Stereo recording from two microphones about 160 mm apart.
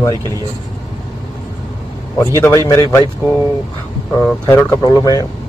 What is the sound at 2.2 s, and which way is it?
Speech, 20° left (ahead or behind).